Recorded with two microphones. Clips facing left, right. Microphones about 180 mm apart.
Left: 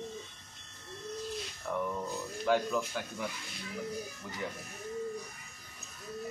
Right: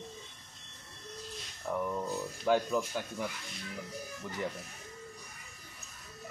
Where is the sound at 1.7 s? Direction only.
15° right (ahead or behind).